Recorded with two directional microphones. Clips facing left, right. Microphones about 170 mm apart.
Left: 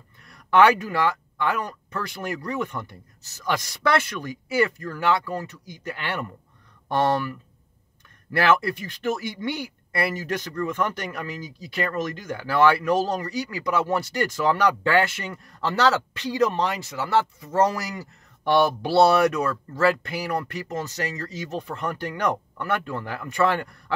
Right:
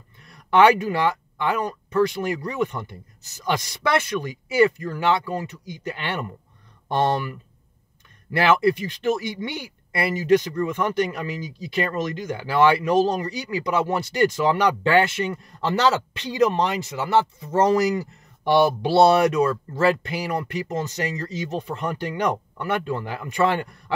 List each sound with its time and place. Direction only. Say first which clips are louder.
0.3 s speech: right 2 dB; 20° right (ahead or behind)
8.3 s speech: right 3 dB; 20° right (ahead or behind)